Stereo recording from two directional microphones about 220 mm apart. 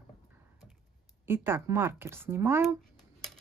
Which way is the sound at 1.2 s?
10° right (ahead or behind).